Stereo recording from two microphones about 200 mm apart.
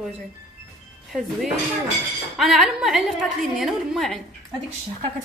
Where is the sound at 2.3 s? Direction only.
Centre (ahead or behind).